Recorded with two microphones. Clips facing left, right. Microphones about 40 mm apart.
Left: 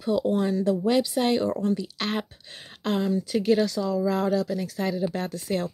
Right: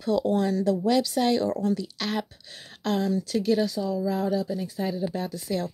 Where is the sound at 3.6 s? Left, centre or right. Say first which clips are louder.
Left 2 dB; left.